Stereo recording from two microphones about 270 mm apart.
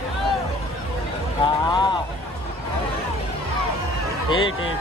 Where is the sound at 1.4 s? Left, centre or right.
Centre.